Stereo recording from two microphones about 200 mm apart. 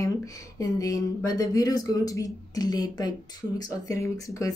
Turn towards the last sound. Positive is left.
turn(degrees=15)  # may be behind; listen again after turning